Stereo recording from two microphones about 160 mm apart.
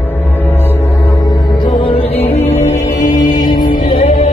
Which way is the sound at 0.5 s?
10° left (ahead or behind).